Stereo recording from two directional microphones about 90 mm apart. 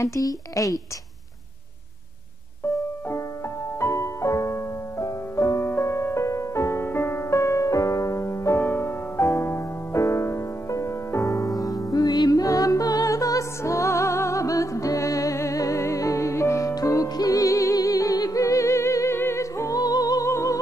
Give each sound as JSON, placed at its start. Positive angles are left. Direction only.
{"t": 0.0, "sound": "a woman's voice", "side_deg": 40}
{"t": 3.8, "sound": "music", "side_deg": 30}